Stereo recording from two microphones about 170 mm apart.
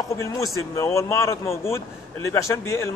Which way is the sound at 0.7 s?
15° left (ahead or behind).